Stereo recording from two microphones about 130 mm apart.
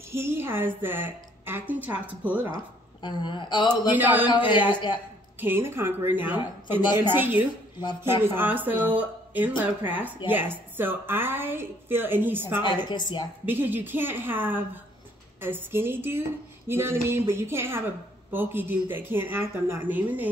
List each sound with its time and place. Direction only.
0.1 s a woman's voice: 20° right (ahead or behind)
2.5 s a woman's voice: 35° left (ahead or behind)
3.9 s a woman's voice: 15° right (ahead or behind)
4.5 s a woman's voice: 35° left (ahead or behind)
5.4 s a woman's voice: 15° right (ahead or behind)
12.6 s a woman's voice: 35° left (ahead or behind)
13.5 s a woman's voice: 15° right (ahead or behind)